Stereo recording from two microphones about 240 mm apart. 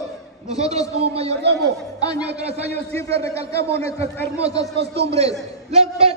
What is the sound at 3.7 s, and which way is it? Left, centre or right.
Speech, right.